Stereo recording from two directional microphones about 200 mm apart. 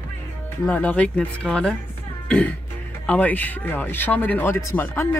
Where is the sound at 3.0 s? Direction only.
10° left (ahead or behind).